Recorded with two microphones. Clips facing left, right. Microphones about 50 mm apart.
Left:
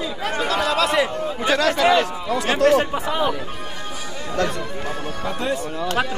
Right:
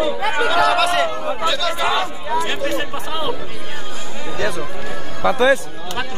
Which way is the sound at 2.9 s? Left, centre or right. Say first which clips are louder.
Left 3 dB; centre.